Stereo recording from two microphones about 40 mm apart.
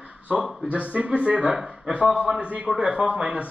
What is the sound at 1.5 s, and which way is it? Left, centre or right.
Speech, right.